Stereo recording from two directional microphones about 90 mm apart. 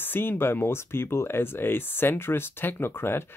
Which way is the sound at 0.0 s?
25° left (ahead or behind).